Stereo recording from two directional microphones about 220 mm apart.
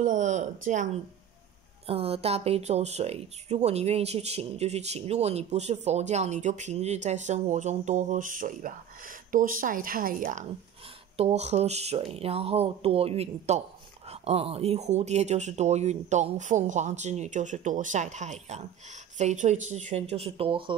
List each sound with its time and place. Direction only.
0.0 s speech: 35° right (ahead or behind)
1.9 s speech: 25° right (ahead or behind)